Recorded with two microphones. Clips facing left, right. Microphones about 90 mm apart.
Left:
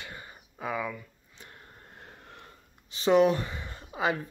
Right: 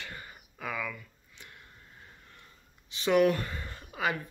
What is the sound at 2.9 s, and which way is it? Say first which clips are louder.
Speech: left 3 dB; 30° left (ahead or behind).